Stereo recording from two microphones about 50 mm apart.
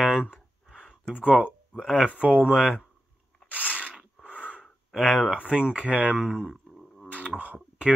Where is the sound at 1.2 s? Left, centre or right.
Right.